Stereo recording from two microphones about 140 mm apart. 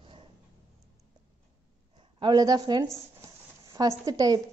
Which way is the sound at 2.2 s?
30° right (ahead or behind).